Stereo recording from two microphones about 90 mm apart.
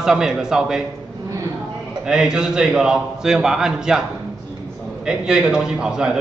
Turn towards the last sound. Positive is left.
turn(degrees=-10)  # may be behind; listen again after turning